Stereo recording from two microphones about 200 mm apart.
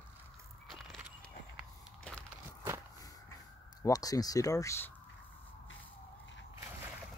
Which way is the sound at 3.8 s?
20° left (ahead or behind).